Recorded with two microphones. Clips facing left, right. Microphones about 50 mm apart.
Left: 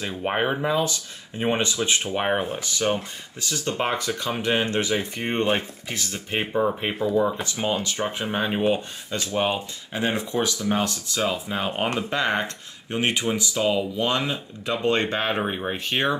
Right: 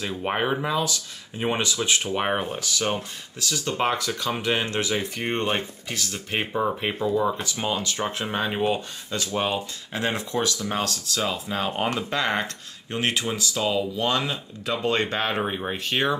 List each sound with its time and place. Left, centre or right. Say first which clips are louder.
0.1 s speech: left 1 dB; centre
0.7 s speech: left 2 dB; left
2.0 s speech: left 1 dB; centre
3.3 s speech: right 1 dB; left
8.0 s speech: left 1 dB; centre
8.7 s speech: left 1 dB; left